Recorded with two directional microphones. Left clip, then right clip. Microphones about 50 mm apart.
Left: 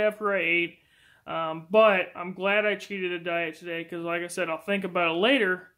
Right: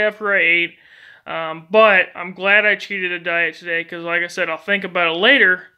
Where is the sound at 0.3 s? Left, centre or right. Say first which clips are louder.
Right 10 dB; centre.